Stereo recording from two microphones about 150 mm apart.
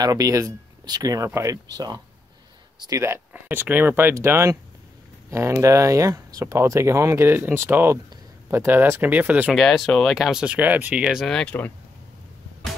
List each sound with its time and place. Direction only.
0.0 s speech: 25° right (ahead or behind)
9.6 s speech: centre (ahead or behind)